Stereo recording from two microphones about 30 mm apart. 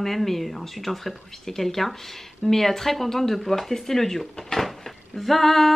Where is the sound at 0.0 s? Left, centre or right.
Centre.